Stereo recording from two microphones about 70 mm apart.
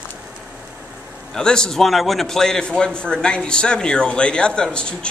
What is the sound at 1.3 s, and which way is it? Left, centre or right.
A man's voice, centre.